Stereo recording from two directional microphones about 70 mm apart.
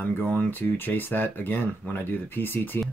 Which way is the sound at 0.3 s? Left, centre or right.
Left.